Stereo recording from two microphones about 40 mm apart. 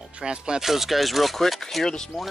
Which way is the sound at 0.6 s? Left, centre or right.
Centre.